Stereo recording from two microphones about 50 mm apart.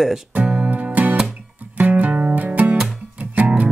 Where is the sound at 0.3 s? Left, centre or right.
Right.